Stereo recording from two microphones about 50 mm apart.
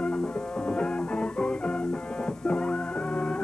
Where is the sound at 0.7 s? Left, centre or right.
Centre.